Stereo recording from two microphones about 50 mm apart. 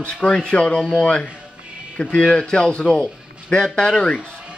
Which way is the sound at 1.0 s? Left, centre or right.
Left.